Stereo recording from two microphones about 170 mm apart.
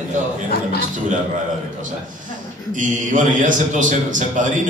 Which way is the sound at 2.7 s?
50° right (ahead or behind).